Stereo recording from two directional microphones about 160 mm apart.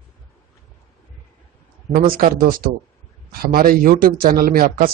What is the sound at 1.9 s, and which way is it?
Speech, 60° right (ahead or behind).